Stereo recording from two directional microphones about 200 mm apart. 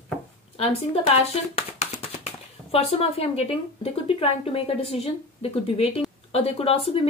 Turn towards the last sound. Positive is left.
turn(degrees=30)  # may be behind; listen again after turning